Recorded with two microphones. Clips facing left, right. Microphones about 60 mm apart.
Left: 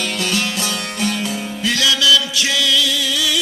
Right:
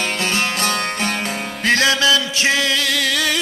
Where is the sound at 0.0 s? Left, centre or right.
Right.